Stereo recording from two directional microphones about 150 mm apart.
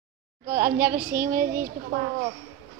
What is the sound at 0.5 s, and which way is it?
A child's voice, 65° right (ahead or behind).